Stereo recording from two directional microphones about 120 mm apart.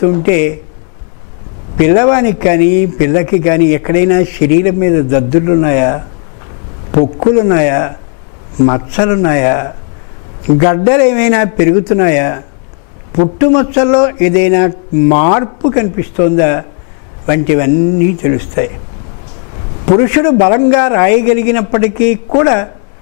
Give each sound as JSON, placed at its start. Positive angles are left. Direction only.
{"t": 0.0, "sound": "a man's voice", "side_deg": 10}
{"t": 1.8, "sound": "a man's voice", "side_deg": 10}
{"t": 19.9, "sound": "a man's voice", "side_deg": 15}